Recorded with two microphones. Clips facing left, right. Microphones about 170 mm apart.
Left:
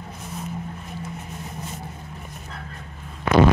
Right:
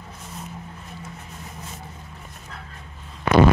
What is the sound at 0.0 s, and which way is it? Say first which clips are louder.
Vehicle: left 4 dB; 10° left (ahead or behind).